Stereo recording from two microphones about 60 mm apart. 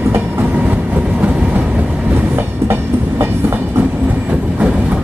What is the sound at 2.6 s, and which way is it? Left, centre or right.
Train, right.